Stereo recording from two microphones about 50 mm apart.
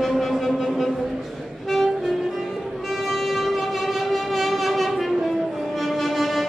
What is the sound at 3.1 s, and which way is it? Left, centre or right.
Music, centre.